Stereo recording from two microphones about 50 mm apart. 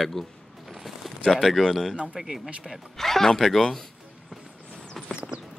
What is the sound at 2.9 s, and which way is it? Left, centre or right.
Speech, centre.